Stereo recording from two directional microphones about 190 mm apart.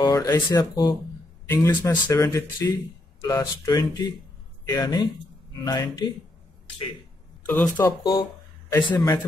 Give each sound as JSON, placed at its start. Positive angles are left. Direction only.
{"t": 0.0, "sound": "speech", "side_deg": 20}
{"t": 7.4, "sound": "speech", "side_deg": 5}
{"t": 7.7, "sound": "speech", "side_deg": 20}